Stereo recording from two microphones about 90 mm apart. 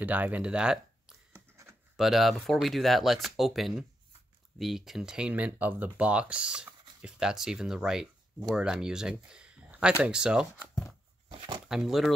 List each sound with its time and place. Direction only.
0.0 s speech: 20° right (ahead or behind)
1.3 s writing: 35° right (ahead or behind)
2.0 s speech: 5° right (ahead or behind)
11.2 s a sound: 70° right (ahead or behind)
11.7 s speech: 5° right (ahead or behind)